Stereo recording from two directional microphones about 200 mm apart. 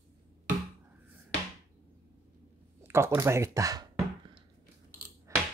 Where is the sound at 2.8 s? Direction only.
10° right (ahead or behind).